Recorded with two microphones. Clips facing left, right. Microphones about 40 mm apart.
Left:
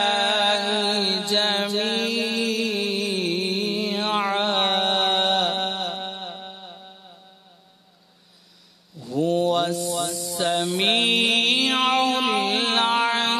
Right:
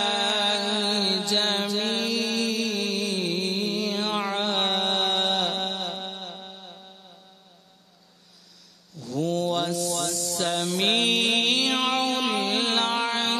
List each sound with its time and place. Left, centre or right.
0.0 s music: centre
3.5 s mantra: centre
8.9 s a sound: centre
11.5 s music: centre